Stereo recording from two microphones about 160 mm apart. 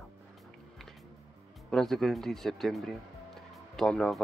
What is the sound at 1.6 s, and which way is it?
Speech, 5° left (ahead or behind).